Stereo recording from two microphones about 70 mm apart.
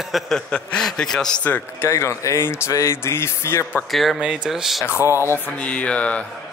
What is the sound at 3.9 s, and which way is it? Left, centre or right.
Speech, centre.